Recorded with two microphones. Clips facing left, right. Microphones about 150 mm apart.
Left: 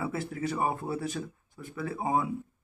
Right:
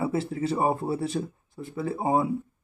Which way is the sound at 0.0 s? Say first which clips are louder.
Right 5 dB; 25° right (ahead or behind).